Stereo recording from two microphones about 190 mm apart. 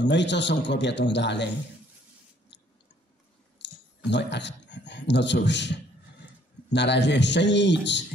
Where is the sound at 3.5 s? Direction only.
65° left (ahead or behind).